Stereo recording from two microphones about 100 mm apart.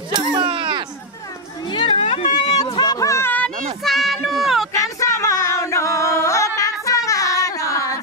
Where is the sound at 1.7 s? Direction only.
60° left (ahead or behind).